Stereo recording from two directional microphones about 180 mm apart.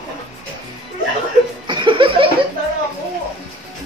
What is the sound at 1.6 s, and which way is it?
Chuckle, 25° right (ahead or behind).